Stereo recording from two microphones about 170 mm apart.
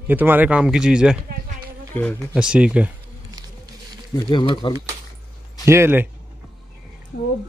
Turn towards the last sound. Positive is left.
turn(degrees=65)  # may be behind; listen again after turning